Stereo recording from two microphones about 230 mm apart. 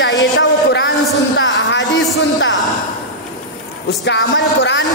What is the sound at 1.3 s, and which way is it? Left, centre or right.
A man's voice, left.